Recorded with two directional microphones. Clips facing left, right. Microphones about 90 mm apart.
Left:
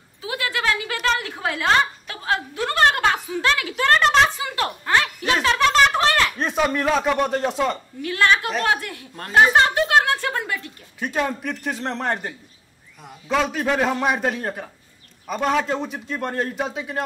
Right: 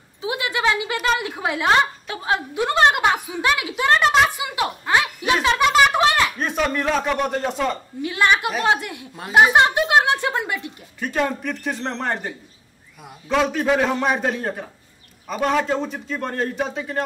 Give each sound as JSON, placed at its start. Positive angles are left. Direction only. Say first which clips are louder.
{"t": 0.2, "sound": "a sound", "louder": "right 3 dB", "side_deg": -20}
{"t": 1.0, "sound": "a woman's voice", "louder": "even", "side_deg": -15}
{"t": 6.4, "sound": "a man's voice", "louder": "left 1 dB", "side_deg": 0}
{"t": 8.0, "sound": "a woman's voice", "louder": "right 1 dB", "side_deg": -15}
{"t": 11.0, "sound": "a man's voice", "louder": "right 1 dB", "side_deg": 0}